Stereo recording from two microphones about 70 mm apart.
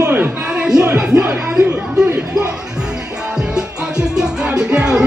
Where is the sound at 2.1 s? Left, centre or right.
Right.